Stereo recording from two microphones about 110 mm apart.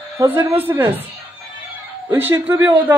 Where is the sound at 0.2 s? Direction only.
25° right (ahead or behind).